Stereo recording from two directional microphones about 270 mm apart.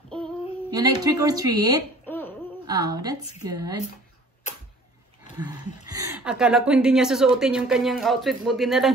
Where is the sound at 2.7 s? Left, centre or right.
Centre.